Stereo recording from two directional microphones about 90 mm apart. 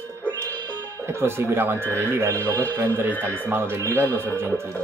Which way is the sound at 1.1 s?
30° right (ahead or behind).